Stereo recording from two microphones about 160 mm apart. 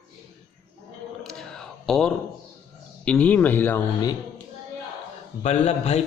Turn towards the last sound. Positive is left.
turn(degrees=40)  # may be behind; listen again after turning